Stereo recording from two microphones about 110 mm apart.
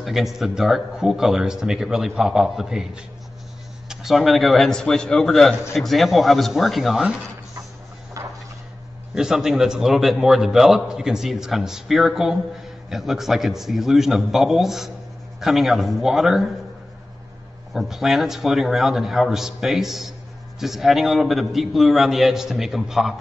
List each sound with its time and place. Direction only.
0.0 s a man's voice: centre (ahead or behind)
8.2 s a sound: 30° right (ahead or behind)
9.1 s a man's voice: 5° right (ahead or behind)
17.7 s a man's voice: centre (ahead or behind)